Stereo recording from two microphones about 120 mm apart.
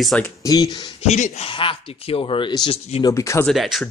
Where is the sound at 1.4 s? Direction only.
50° left (ahead or behind).